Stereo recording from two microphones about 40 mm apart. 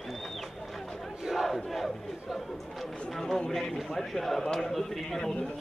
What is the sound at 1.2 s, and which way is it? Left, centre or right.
Battle cry, centre.